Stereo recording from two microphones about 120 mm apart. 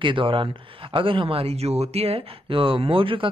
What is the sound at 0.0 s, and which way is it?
Speech, 45° right (ahead or behind).